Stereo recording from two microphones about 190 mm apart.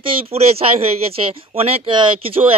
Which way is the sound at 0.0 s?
30° right (ahead or behind).